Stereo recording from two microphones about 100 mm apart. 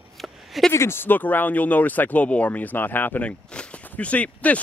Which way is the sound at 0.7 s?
25° left (ahead or behind).